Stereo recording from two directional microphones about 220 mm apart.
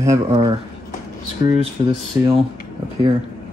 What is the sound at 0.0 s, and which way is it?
Speech, 15° right (ahead or behind).